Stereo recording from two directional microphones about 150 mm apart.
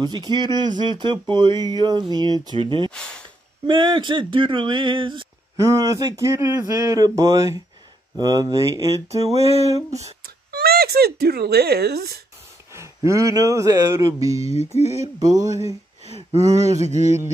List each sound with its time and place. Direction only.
0.0 s speech: 30° right (ahead or behind)
5.6 s speech: 20° right (ahead or behind)
9.2 s a sound: 45° right (ahead or behind)
9.7 s speech: 20° right (ahead or behind)
10.2 s speech: 90° right
12.7 s speech: 20° right (ahead or behind)
14.4 s a sound: 45° left (ahead or behind)
15.1 s speech: 25° right (ahead or behind)